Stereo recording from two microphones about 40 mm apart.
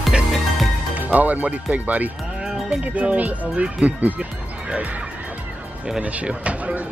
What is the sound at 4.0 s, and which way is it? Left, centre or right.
Speech, right.